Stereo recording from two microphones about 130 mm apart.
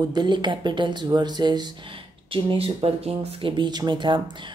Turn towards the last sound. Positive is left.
turn(degrees=-35)  # may be behind; listen again after turning